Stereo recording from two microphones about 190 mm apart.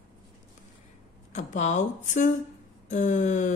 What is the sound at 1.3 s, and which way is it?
Speech, 40° left (ahead or behind).